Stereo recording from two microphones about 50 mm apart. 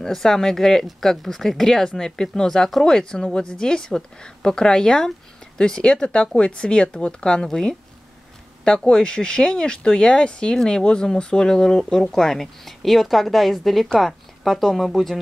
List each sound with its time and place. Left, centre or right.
0.0 s speech: centre
8.8 s speech: centre